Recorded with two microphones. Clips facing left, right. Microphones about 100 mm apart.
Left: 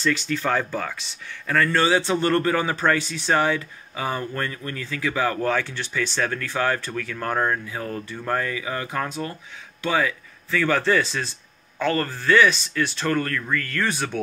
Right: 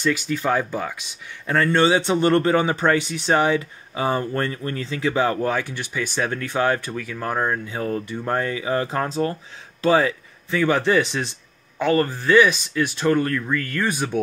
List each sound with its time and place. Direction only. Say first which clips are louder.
0.0 s speech: right 1 dB; 10° right (ahead or behind)
1.5 s speech: right 2 dB; 25° right (ahead or behind)
5.5 s speech: even; 15° right (ahead or behind)
7.6 s speech: right 5 dB; 25° right (ahead or behind)
10.5 s speech: right 2 dB; 15° right (ahead or behind)